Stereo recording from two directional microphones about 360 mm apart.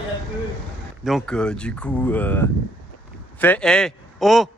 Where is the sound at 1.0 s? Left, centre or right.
Centre.